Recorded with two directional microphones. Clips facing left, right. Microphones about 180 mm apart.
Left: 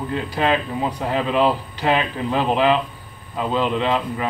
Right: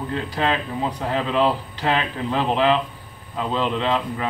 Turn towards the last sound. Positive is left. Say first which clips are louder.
# left 2 dB
turn(degrees=10)  # may be behind; listen again after turning